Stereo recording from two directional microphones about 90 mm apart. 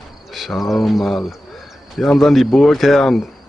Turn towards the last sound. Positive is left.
turn(degrees=0)  # may be behind; listen again after turning